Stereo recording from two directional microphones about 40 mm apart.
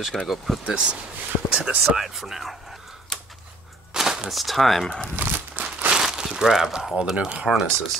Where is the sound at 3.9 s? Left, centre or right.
Centre.